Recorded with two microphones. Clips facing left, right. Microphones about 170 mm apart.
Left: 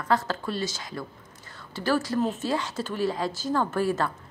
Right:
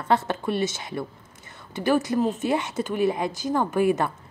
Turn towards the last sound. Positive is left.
turn(degrees=-15)  # may be behind; listen again after turning